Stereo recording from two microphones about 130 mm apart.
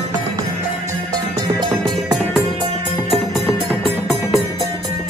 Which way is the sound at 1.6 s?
30° right (ahead or behind).